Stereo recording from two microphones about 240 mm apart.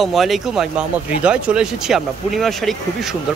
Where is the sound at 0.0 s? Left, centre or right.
Centre.